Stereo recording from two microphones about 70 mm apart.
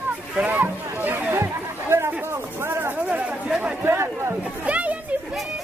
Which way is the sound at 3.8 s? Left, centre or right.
Right.